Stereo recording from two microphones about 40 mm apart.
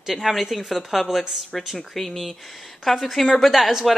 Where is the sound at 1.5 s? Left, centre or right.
Centre.